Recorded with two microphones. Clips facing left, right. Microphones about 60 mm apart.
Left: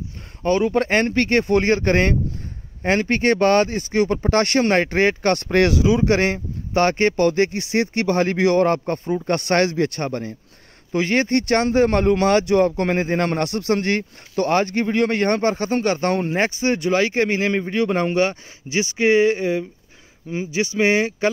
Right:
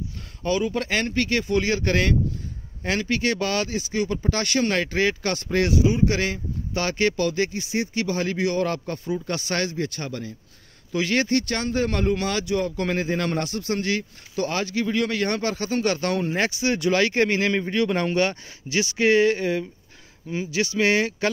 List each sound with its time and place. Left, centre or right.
0.5 s speech: left
5.7 s speech: left
6.0 s speech: left
7.5 s speech: left
8.6 s speech: left
11.2 s speech: left
12.8 s speech: left
13.4 s speech: left